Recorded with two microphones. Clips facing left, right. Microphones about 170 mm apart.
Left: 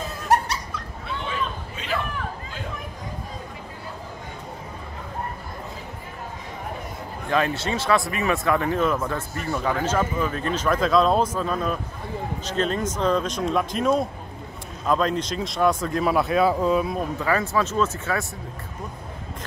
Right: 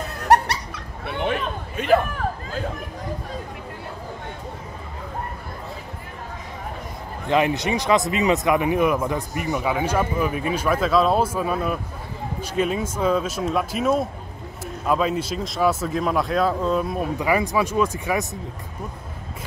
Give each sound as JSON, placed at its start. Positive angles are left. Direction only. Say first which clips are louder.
{"t": 0.1, "sound": "dog", "louder": "right 4 dB", "side_deg": -65}
{"t": 1.0, "sound": "hubbub", "louder": "right 5 dB", "side_deg": -65}
{"t": 7.2, "sound": "speech", "louder": "right 3 dB", "side_deg": -15}
{"t": 17.2, "sound": "speech", "louder": "right 2 dB", "side_deg": -15}